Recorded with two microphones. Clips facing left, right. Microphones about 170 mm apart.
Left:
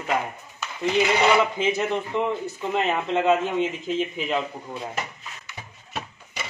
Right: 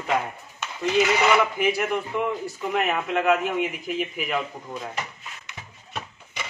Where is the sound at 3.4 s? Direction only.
15° right (ahead or behind).